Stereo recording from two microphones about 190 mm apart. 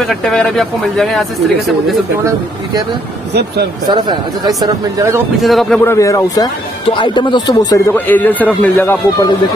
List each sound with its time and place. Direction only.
0.0 s speech: centre (ahead or behind)
3.9 s speech: 20° right (ahead or behind)
5.4 s speech: centre (ahead or behind)
5.9 s speech: 15° left (ahead or behind)
7.9 s a man's voice: 10° left (ahead or behind)